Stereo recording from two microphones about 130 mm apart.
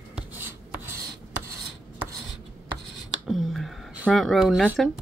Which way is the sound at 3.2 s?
Centre (ahead or behind).